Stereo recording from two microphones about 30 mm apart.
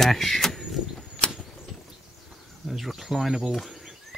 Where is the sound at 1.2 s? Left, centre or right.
Left.